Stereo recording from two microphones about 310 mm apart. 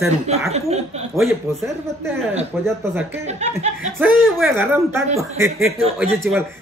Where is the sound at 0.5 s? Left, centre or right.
Centre.